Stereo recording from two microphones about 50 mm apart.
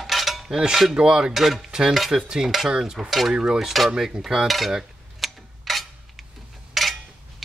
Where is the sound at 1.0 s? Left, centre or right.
Centre.